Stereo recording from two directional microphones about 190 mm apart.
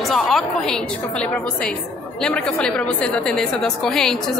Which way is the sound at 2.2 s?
5° left (ahead or behind).